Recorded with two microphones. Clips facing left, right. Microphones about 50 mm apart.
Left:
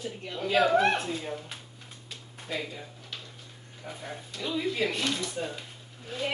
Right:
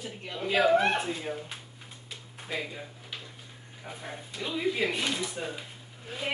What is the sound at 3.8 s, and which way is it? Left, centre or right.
A child's voice, centre.